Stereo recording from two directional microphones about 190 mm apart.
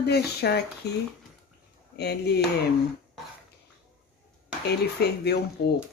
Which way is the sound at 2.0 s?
60° left (ahead or behind).